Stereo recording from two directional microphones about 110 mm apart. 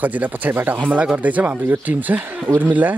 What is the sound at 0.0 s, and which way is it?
Speech, 15° right (ahead or behind).